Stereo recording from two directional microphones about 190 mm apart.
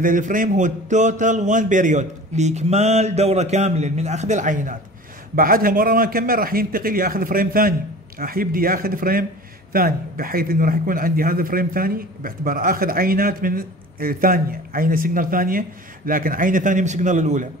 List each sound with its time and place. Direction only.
0.0 s a man's voice: 45° right (ahead or behind)